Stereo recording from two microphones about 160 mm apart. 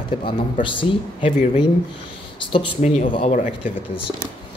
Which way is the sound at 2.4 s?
35° left (ahead or behind).